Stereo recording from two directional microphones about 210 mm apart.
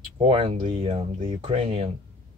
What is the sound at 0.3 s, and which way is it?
Speech, 25° right (ahead or behind).